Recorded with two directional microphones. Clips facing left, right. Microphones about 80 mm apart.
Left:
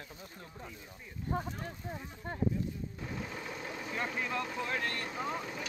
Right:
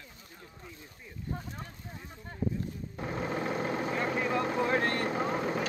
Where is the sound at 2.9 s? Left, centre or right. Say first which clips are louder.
Right 7 dB; right.